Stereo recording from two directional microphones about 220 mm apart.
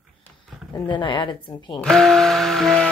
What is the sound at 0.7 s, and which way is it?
A woman's voice, 20° left (ahead or behind).